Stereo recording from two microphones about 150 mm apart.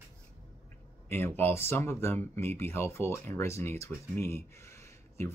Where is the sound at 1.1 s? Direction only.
15° left (ahead or behind).